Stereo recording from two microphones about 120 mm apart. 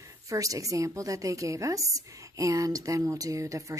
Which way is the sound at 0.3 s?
30° right (ahead or behind).